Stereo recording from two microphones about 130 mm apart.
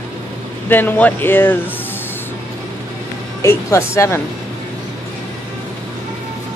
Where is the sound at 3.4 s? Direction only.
20° left (ahead or behind).